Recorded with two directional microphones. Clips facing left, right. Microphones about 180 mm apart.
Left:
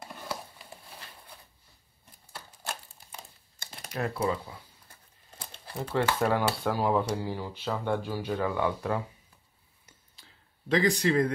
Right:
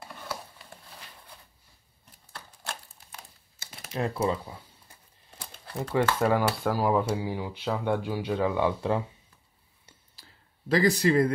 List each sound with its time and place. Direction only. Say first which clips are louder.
2.3 s crumpling: even; 5° left (ahead or behind)
3.6 s a sound: left 1 dB; 5° right (ahead or behind)
3.9 s speech: right 2 dB; 25° right (ahead or behind)
5.5 s crumpling: right 2 dB; centre (ahead or behind)
6.1 s speech: right 2 dB; centre (ahead or behind); by 9.0 s 25° right (ahead or behind)
10.1 s a sound: right 2 dB; centre (ahead or behind)